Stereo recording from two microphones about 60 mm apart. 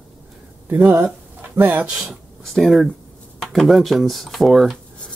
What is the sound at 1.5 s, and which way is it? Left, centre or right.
Speech, right.